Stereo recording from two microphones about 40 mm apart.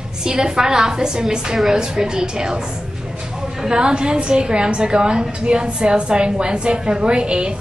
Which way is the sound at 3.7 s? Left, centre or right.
Right.